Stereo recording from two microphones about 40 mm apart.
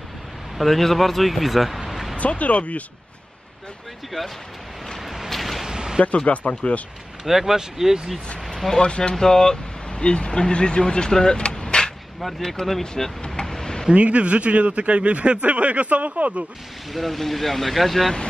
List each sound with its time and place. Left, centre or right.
0.6 s speech: centre
2.1 s speech: left
5.3 s a sound: centre
5.7 s a sound: centre
6.2 s speech: left
7.2 s speech: centre
8.5 s speech: centre
8.8 s speech: left
9.1 s speech: centre
9.9 s speech: left
12.9 s vehicle: centre
13.9 s speech: right
16.9 s speech: centre